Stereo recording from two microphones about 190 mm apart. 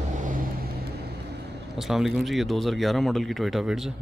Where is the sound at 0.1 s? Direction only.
45° right (ahead or behind).